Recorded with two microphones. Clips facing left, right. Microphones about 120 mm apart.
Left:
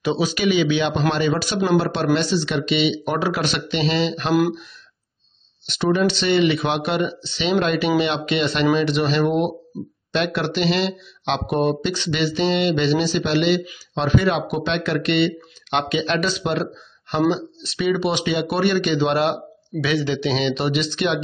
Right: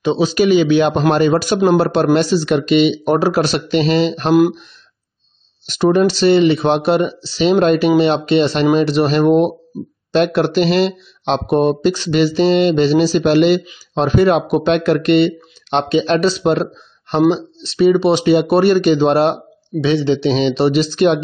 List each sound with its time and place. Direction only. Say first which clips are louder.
0.0 s speech: right 6 dB; 30° right (ahead or behind)
4.4 s speech: right 7 dB; 20° right (ahead or behind)
5.7 s speech: right 6 dB; 45° right (ahead or behind)